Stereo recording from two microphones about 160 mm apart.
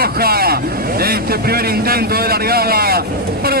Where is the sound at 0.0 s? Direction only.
70° right (ahead or behind).